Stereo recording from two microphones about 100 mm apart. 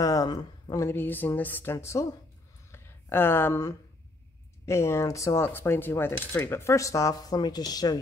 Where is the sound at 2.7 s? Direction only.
20° left (ahead or behind).